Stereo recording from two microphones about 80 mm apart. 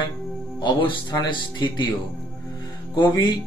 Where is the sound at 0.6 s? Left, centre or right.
Left.